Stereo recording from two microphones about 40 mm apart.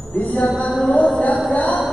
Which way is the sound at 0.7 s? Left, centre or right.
Centre.